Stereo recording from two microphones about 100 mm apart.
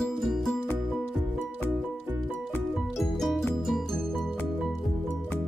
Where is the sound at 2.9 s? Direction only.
Centre (ahead or behind).